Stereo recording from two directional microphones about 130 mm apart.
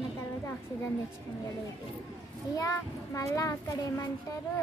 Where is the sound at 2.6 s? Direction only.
25° left (ahead or behind).